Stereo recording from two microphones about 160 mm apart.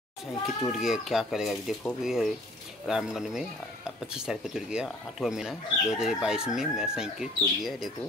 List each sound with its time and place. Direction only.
0.7 s speech: centre (ahead or behind)